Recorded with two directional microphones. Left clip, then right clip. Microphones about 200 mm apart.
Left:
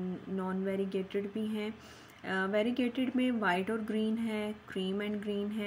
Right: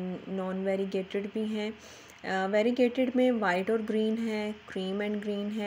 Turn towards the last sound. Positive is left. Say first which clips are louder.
# right 3 dB
turn(degrees=-15)  # may be behind; listen again after turning